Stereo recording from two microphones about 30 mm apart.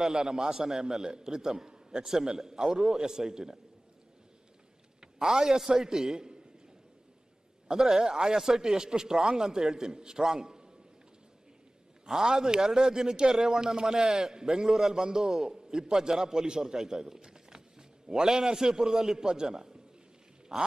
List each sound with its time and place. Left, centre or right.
0.0 s a man's voice: right
5.0 s a man's voice: centre
7.6 s a man's voice: right
12.1 s a man's voice: centre
20.5 s a sound: centre